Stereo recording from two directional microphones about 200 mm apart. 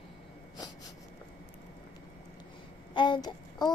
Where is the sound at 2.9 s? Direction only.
20° left (ahead or behind).